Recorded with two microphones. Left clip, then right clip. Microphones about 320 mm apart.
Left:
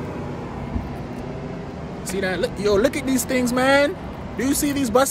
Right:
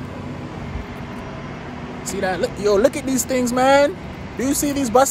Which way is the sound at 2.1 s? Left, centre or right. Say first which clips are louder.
Right 2 dB; centre.